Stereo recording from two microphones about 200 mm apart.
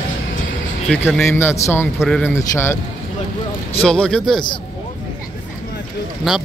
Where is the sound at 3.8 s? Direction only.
5° left (ahead or behind).